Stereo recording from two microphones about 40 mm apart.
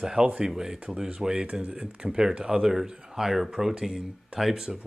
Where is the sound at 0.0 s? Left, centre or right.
Centre.